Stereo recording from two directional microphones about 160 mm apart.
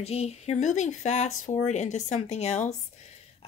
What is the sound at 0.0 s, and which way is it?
A woman's voice, 40° left (ahead or behind).